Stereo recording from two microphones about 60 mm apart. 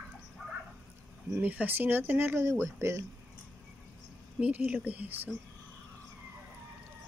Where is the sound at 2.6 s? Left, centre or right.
Right.